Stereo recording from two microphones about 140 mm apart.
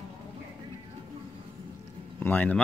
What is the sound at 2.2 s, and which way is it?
Speech, 15° left (ahead or behind).